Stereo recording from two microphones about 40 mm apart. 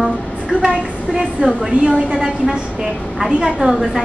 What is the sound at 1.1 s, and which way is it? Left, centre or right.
A woman's voice, centre.